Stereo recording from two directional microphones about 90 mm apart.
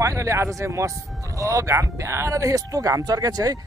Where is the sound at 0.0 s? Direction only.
35° right (ahead or behind).